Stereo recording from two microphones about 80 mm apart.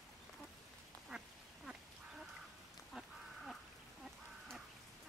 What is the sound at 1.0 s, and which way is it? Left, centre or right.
Duck, centre.